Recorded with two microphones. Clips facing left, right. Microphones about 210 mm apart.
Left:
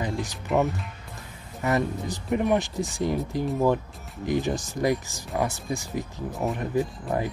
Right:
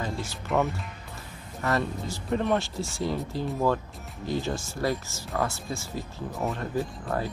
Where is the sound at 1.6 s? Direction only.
15° left (ahead or behind).